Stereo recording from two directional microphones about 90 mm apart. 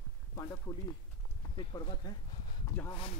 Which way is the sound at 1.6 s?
55° left (ahead or behind).